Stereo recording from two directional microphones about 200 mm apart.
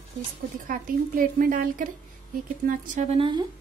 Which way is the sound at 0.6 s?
45° right (ahead or behind).